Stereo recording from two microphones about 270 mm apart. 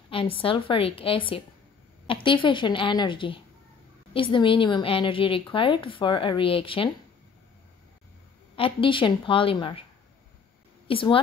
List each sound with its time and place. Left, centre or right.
0.1 s a woman's voice: centre
8.5 s speech: centre
10.9 s a woman's voice: centre